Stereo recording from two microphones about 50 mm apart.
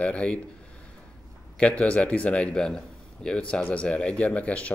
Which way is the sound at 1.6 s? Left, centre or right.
Left.